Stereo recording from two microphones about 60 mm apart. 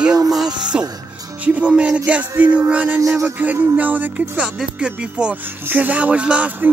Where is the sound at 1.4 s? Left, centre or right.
Right.